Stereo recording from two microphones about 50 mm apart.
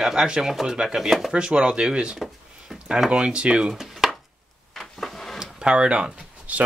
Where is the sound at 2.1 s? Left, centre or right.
Centre.